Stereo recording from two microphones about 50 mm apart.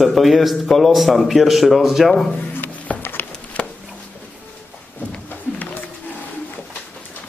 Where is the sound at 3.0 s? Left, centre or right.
Left.